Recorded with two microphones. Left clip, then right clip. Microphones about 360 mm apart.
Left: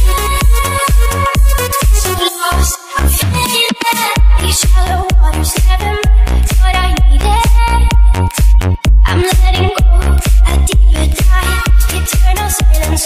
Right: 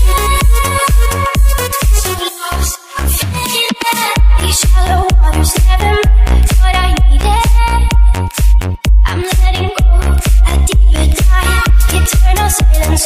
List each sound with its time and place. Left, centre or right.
0.1 s music: right
0.6 s music: right
1.0 s music: centre
1.3 s music: left
2.0 s music: left
3.7 s music: left
4.4 s music: centre
4.7 s music: right
5.2 s music: right
7.2 s music: centre
7.5 s music: centre
8.2 s music: left
11.3 s music: right